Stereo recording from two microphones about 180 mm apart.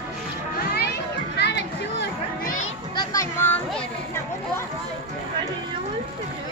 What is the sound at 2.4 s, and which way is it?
Music, 50° left (ahead or behind).